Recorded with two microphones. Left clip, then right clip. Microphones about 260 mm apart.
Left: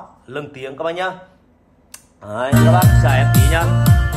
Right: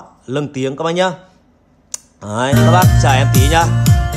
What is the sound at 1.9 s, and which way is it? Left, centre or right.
Clicking, right.